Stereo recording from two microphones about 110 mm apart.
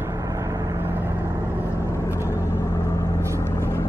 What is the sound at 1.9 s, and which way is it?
Vehicle, 25° left (ahead or behind).